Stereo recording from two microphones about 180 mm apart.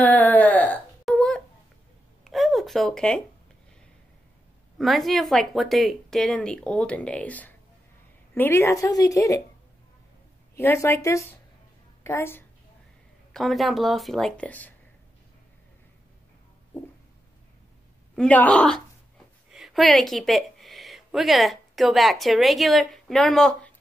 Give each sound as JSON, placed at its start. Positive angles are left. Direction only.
{"t": 0.0, "sound": "a sound", "side_deg": 10}
{"t": 4.7, "sound": "a woman's voice", "side_deg": 0}
{"t": 10.5, "sound": "a woman's voice", "side_deg": 15}
{"t": 13.3, "sound": "speech", "side_deg": 0}
{"t": 18.1, "sound": "speech", "side_deg": 5}